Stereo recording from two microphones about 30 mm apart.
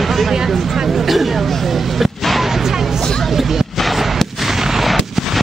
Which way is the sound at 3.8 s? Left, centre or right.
Centre.